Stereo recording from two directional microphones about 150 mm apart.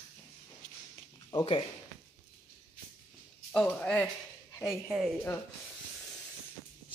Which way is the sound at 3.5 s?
10° left (ahead or behind).